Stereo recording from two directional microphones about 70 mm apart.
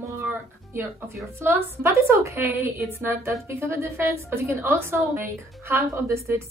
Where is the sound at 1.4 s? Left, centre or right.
Right.